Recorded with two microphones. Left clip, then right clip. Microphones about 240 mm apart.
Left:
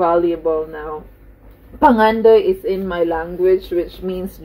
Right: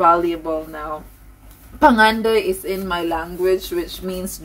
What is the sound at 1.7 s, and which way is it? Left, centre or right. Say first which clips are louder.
Speech: left 1 dB; centre.